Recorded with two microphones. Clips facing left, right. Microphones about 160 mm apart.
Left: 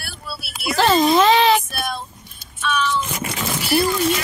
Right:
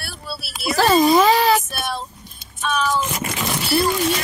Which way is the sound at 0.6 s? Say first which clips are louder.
Right 1 dB; 5° right (ahead or behind).